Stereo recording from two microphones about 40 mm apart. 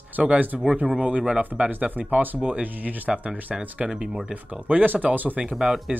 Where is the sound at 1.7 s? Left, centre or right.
Right.